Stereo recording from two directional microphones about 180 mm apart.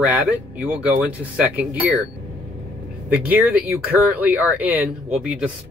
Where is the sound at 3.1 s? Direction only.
10° right (ahead or behind).